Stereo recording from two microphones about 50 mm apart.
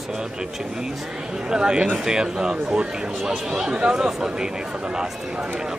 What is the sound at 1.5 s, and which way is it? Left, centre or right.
A man's voice, centre.